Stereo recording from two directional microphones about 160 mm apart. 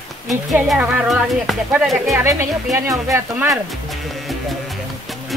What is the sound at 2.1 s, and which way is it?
Speech, 20° right (ahead or behind).